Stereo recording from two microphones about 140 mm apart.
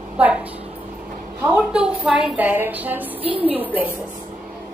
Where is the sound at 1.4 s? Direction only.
10° right (ahead or behind).